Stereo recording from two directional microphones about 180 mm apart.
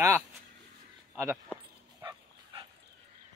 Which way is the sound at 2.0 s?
20° right (ahead or behind).